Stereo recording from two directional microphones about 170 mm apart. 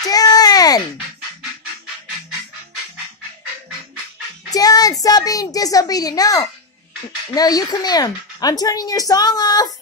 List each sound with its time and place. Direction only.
0.0 s a sound: 20° left (ahead or behind)
4.5 s music: 20° left (ahead or behind)
5.0 s speech: 20° left (ahead or behind)